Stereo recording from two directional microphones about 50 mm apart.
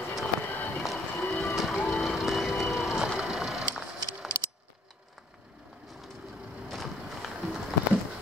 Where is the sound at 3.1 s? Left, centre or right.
Centre.